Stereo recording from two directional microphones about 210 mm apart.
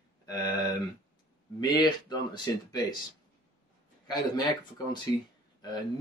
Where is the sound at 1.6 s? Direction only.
20° left (ahead or behind).